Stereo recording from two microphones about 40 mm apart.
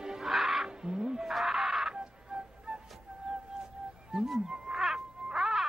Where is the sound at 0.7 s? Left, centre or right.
Centre.